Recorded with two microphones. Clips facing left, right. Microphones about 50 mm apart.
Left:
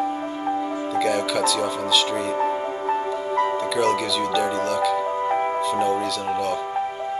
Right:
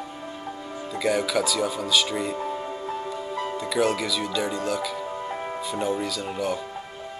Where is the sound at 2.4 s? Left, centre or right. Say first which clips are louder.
Left 7 dB; left.